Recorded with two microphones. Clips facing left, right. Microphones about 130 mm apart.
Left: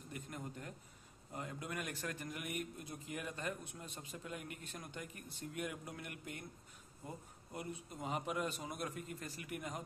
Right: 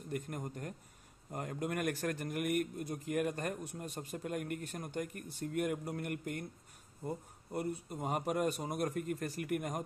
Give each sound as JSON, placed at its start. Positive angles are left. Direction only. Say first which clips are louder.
{"t": 0.1, "sound": "a man's voice", "louder": "right 7 dB", "side_deg": -50}